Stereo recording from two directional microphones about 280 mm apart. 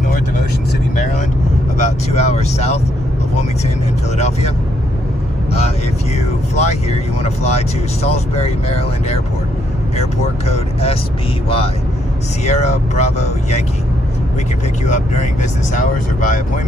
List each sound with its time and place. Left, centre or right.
1.8 s speech: left
6.1 s speech: left
9.9 s speech: left
14.9 s speech: left